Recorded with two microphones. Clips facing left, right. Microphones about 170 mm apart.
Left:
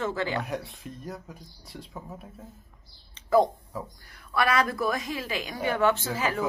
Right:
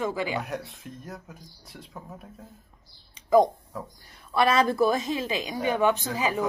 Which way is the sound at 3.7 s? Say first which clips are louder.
Left 2 dB; centre (ahead or behind).